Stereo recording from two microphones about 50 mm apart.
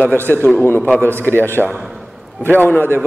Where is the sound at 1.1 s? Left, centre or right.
Right.